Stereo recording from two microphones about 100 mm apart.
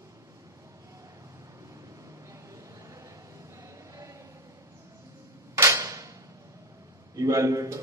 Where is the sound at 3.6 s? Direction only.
30° right (ahead or behind).